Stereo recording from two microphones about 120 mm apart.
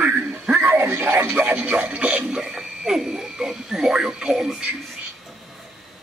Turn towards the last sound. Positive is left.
turn(degrees=-5)  # may be behind; listen again after turning